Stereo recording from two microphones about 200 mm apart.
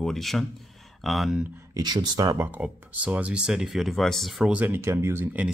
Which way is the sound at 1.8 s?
20° right (ahead or behind).